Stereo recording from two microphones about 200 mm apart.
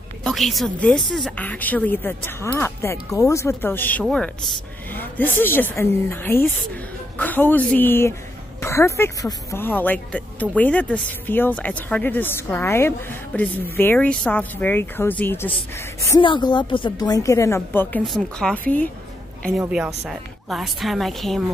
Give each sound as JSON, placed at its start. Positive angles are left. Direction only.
{"t": 0.2, "sound": "speech", "side_deg": 0}
{"t": 16.0, "sound": "speech", "side_deg": 20}
{"t": 19.6, "sound": "speech", "side_deg": -5}